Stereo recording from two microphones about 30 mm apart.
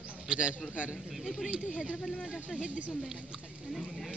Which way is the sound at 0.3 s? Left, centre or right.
Right.